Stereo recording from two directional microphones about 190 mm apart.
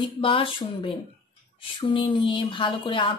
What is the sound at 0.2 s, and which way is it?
Music, 25° left (ahead or behind).